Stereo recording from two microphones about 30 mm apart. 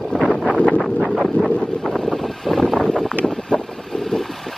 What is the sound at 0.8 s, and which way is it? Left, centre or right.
Wind noise, centre.